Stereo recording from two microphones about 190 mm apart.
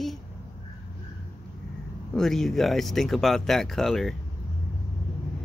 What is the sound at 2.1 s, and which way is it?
Speech, centre (ahead or behind).